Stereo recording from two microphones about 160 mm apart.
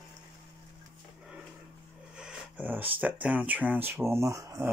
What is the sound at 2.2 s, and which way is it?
Speech, 5° right (ahead or behind).